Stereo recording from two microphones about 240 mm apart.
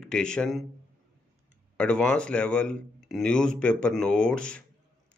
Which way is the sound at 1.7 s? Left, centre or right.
Centre.